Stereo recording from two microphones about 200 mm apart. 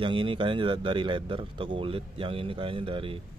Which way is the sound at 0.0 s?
25° right (ahead or behind).